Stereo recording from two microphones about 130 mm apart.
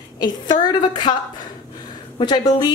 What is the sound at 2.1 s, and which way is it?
Speech, 35° left (ahead or behind).